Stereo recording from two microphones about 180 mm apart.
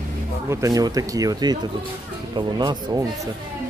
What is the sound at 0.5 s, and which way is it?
Speech, 20° right (ahead or behind).